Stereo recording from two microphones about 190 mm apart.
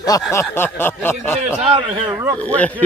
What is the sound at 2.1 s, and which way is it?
Speech, 10° right (ahead or behind).